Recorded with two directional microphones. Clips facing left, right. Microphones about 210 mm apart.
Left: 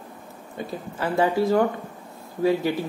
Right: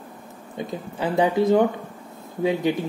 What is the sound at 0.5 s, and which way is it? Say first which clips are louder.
Speech: right 2 dB; 20° right (ahead or behind).